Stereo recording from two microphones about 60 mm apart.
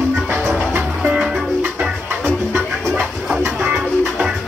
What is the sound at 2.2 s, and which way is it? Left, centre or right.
Music, right.